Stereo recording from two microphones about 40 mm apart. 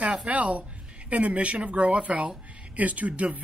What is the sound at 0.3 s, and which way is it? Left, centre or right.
Speech, right.